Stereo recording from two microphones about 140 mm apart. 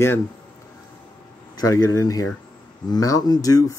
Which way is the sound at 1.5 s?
25° left (ahead or behind).